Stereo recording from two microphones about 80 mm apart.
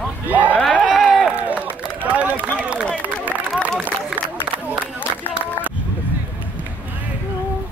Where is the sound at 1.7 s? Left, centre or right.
Centre.